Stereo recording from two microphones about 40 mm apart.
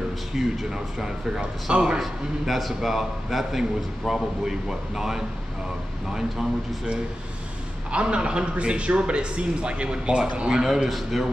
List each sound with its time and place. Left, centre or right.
0.4 s a man's voice: centre
2.0 s a man's voice: centre
7.9 s a man's voice: right
10.9 s a man's voice: centre